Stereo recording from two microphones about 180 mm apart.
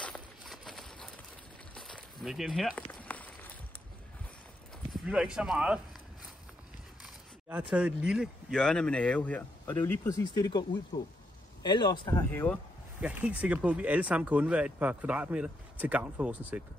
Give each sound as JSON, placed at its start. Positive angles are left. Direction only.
{"t": 0.0, "sound": "a sound", "side_deg": 0}
{"t": 4.9, "sound": "speech", "side_deg": -5}
{"t": 7.4, "sound": "speech", "side_deg": -10}
{"t": 12.3, "sound": "speech", "side_deg": 10}
{"t": 13.0, "sound": "speech", "side_deg": -5}